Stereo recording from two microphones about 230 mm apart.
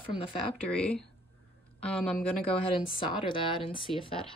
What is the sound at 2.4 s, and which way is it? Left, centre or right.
A woman's voice, left.